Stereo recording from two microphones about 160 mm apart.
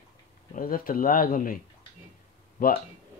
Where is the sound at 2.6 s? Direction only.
65° left (ahead or behind).